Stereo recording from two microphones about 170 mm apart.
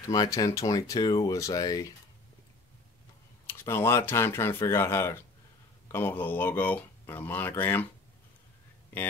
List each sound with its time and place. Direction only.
0.1 s speech: 20° left (ahead or behind)
3.4 s speech: 15° left (ahead or behind)